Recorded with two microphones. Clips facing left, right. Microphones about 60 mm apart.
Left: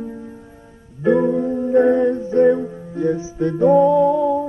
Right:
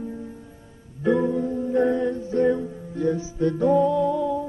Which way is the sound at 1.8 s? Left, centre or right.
Left.